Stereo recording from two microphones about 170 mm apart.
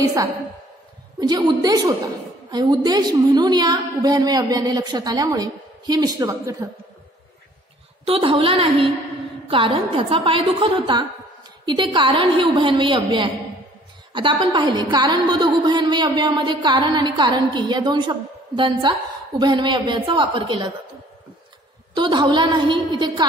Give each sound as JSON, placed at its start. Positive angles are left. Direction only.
{"t": 0.0, "sound": "a woman's voice", "side_deg": -20}
{"t": 8.0, "sound": "a woman's voice", "side_deg": -35}
{"t": 21.9, "sound": "a woman's voice", "side_deg": -25}